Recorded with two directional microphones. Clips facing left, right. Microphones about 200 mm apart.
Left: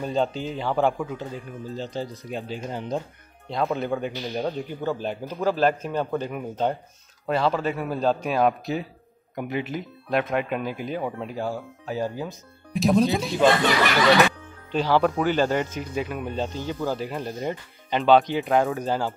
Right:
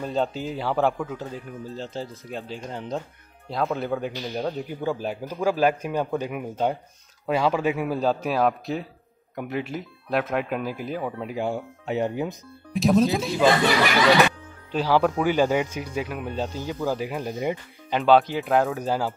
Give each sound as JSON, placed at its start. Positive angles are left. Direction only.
{"t": 0.0, "sound": "speech", "side_deg": 0}
{"t": 4.6, "sound": "speech", "side_deg": -10}
{"t": 11.4, "sound": "speech", "side_deg": -25}
{"t": 12.7, "sound": "speech", "side_deg": 0}
{"t": 14.7, "sound": "speech", "side_deg": -10}